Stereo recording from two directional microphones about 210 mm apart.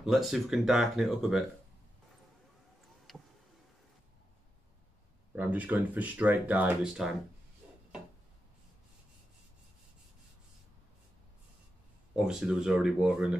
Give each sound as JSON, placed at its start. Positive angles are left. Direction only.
{"t": 0.0, "sound": "speech", "side_deg": 0}
{"t": 3.1, "sound": "a sound", "side_deg": 0}
{"t": 5.3, "sound": "speech", "side_deg": -10}
{"t": 12.2, "sound": "speech", "side_deg": -5}